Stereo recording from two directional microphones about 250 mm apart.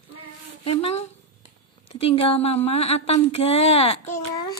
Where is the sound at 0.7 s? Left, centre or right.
Left.